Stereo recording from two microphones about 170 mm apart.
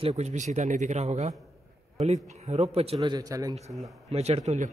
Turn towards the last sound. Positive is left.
turn(degrees=-40)  # may be behind; listen again after turning